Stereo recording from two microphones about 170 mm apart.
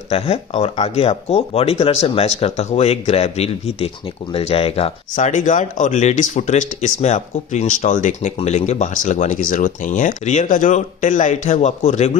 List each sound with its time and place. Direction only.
0.1 s speech: 35° left (ahead or behind)
5.1 s speech: 45° left (ahead or behind)